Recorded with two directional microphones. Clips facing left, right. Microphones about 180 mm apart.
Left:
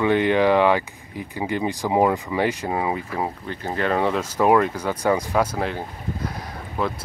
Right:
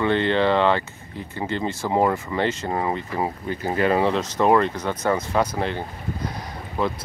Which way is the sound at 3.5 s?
10° right (ahead or behind).